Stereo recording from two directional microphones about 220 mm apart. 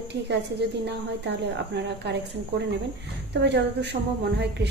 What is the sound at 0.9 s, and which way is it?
A woman's voice, 50° right (ahead or behind).